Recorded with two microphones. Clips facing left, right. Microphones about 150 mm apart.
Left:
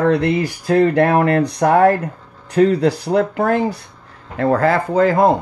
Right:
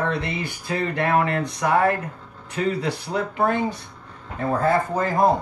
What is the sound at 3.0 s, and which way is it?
Speech, 80° left.